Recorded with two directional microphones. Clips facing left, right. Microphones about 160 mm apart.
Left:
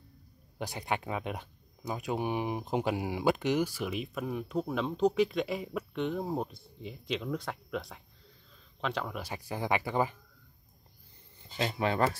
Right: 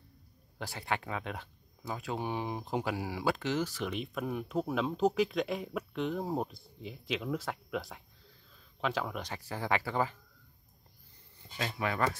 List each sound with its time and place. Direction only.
0.6 s speech: 15° left (ahead or behind); by 9.3 s centre (ahead or behind)
9.3 s speech: 15° left (ahead or behind)
11.5 s speech: 25° left (ahead or behind)